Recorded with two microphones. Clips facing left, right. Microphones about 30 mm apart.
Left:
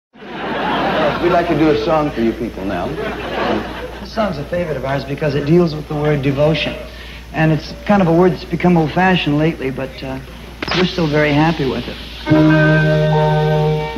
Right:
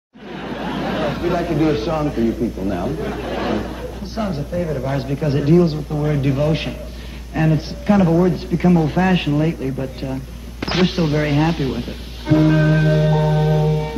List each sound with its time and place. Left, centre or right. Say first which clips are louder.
0.4 s a man's voice: left 7 dB; left
9.6 s speech: left 3 dB; left
10.6 s a man's voice: left 2 dB; centre
13.2 s music: left 3 dB; left